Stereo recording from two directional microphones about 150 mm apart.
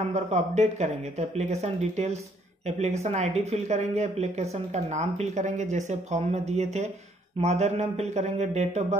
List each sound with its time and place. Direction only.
0.1 s speech: 50° right (ahead or behind)